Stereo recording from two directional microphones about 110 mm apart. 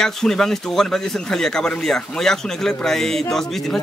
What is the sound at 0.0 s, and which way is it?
Speech, 5° left (ahead or behind).